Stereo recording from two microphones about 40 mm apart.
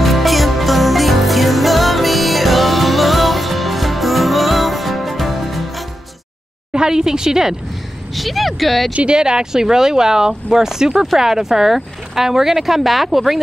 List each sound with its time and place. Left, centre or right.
0.0 s music: centre
6.7 s speech: centre
8.2 s speech: centre
8.9 s speech: right; by 13.4 s centre